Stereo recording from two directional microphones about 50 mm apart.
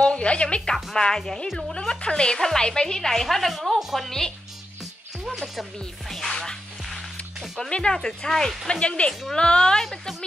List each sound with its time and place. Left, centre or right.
0.0 s a woman's voice: centre
5.6 s a woman's voice: centre
9.8 s a woman's voice: centre